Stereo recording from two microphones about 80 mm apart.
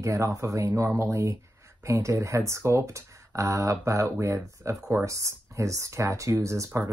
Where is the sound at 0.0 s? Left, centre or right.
Right.